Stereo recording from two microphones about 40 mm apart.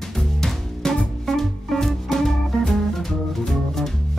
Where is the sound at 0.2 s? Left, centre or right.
Centre.